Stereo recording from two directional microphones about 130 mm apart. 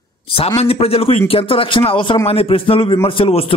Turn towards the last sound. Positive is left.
turn(degrees=45)  # may be behind; listen again after turning